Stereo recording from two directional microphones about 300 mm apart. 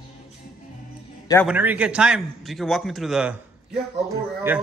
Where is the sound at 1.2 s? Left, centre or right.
Centre.